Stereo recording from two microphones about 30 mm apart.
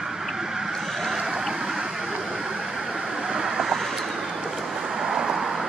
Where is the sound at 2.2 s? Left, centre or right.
Centre.